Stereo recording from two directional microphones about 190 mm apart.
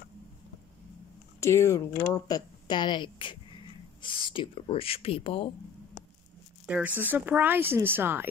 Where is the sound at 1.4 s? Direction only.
15° left (ahead or behind); by 5.5 s 30° left (ahead or behind).